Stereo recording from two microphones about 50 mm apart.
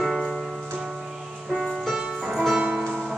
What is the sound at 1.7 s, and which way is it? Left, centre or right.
Music, centre.